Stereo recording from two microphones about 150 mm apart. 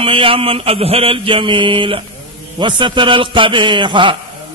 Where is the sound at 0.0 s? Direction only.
35° right (ahead or behind).